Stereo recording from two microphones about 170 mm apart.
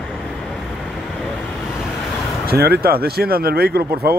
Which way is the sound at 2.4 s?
65° right (ahead or behind).